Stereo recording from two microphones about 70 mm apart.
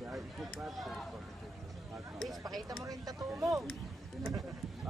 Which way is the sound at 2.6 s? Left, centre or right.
Right.